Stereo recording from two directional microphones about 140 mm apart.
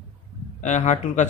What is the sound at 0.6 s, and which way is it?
Speech, 60° left (ahead or behind).